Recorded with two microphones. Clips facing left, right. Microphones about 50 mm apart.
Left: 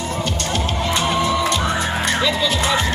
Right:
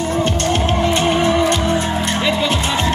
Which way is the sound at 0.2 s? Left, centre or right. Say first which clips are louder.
Right 5 dB; right.